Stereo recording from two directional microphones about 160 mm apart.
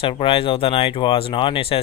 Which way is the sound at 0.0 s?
35° left (ahead or behind).